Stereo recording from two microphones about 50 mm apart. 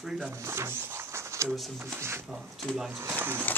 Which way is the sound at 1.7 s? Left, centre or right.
Right.